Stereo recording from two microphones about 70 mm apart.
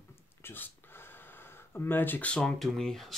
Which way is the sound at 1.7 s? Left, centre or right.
Left.